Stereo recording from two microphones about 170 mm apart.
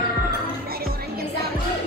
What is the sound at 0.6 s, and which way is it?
Music, 65° right (ahead or behind).